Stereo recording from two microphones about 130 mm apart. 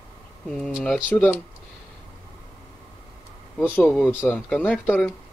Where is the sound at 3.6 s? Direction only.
15° left (ahead or behind).